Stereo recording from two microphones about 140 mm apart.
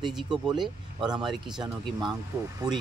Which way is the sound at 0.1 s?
5° right (ahead or behind).